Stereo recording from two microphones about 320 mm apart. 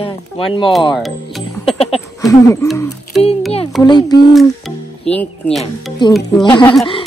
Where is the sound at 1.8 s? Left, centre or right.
Centre.